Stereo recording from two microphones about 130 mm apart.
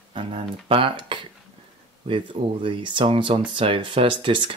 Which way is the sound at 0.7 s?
40° right (ahead or behind).